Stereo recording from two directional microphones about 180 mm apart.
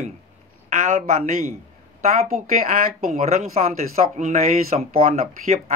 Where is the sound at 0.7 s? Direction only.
40° right (ahead or behind).